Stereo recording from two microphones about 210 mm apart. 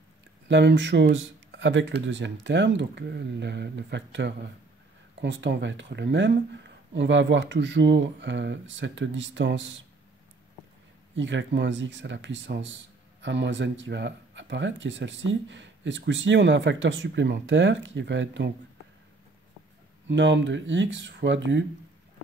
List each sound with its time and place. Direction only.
0.5 s speech: 60° right (ahead or behind)
11.1 s speech: 60° right (ahead or behind)
20.1 s speech: 60° right (ahead or behind)